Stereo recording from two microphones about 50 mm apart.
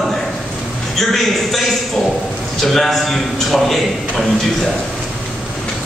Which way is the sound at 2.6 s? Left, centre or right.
Centre.